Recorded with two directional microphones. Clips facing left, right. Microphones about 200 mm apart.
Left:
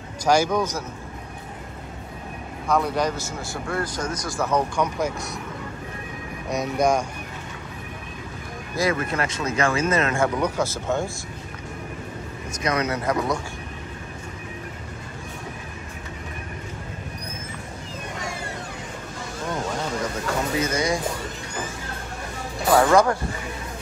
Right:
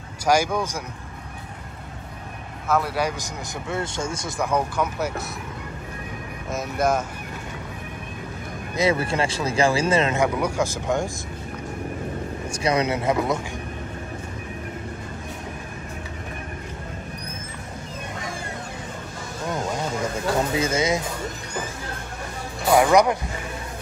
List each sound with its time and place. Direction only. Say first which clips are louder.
0.2 s speech: left 1 dB; 10° right (ahead or behind)
2.7 s a man's voice: left 1 dB; 5° right (ahead or behind); by 4.4 s 25° right (ahead or behind)
4.4 s speech: left 1 dB; 10° right (ahead or behind)
6.5 s speech: left 2 dB; centre (ahead or behind)
8.9 s a man's voice: right 2 dB; 30° right (ahead or behind)
10.1 s speech: even; 15° right (ahead or behind)
12.4 s a man's voice: right 2 dB; 30° right (ahead or behind)
20.5 s a man's voice: right 1 dB; 25° right (ahead or behind)
22.7 s speech: even; 15° right (ahead or behind)